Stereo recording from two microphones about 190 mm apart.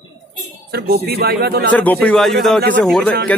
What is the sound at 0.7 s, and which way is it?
Speech, 55° right (ahead or behind).